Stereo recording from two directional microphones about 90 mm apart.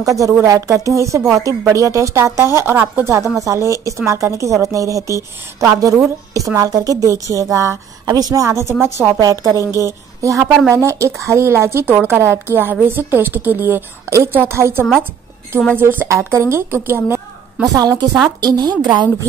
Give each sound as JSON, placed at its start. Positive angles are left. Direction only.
{"t": 0.0, "sound": "a woman's voice", "side_deg": -40}
{"t": 9.2, "sound": "a woman's voice", "side_deg": -40}
{"t": 17.6, "sound": "a woman's voice", "side_deg": -45}